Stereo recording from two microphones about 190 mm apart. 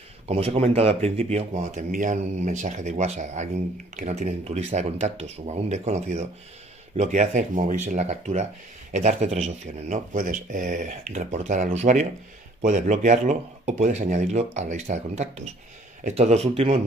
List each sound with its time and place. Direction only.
0.3 s speech: 35° right (ahead or behind)